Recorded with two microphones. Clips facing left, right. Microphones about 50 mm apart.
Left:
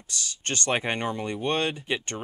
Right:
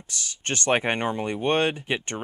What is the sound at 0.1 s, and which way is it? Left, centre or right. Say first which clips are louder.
Speech: right 1 dB; right.